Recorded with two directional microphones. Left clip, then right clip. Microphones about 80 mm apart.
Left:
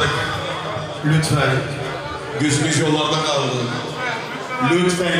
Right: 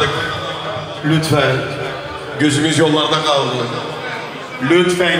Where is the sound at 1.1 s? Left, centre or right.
Centre.